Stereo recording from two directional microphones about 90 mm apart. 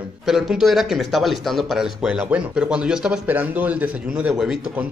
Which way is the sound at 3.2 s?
20° right (ahead or behind).